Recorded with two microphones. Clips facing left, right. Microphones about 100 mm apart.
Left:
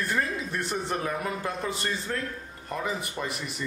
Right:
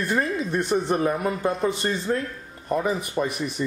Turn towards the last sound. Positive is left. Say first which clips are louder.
# right 8 dB
turn(degrees=-20)  # may be behind; listen again after turning